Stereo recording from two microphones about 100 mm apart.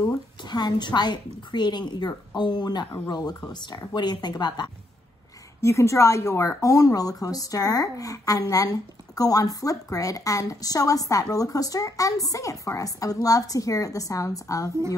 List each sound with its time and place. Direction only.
0.4 s a woman's voice: 45° left (ahead or behind)
5.6 s speech: 30° left (ahead or behind)